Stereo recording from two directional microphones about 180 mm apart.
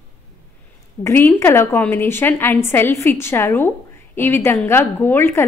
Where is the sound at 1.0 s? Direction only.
10° left (ahead or behind).